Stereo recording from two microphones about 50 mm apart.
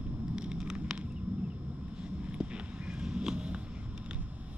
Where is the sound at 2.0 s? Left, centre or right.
Right.